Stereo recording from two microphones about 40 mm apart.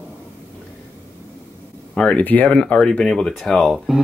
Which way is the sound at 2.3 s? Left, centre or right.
Left.